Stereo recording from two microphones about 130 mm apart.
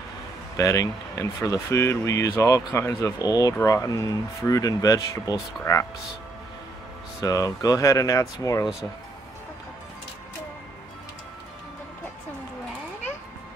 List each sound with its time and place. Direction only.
0.6 s speech: 25° left (ahead or behind)
7.2 s speech: 25° left (ahead or behind)